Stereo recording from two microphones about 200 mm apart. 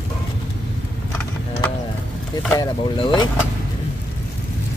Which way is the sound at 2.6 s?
20° left (ahead or behind).